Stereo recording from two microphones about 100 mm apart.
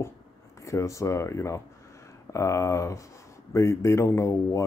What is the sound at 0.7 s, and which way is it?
Speech, 30° left (ahead or behind).